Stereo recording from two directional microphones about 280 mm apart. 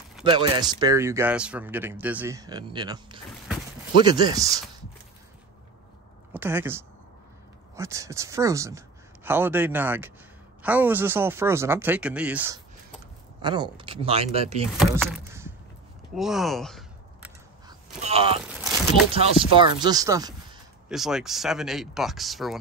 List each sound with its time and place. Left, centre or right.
0.2 s speech: centre
6.3 s speech: centre
14.8 s a sound: centre
17.6 s a sound: right
19.1 s speech: centre
20.9 s speech: centre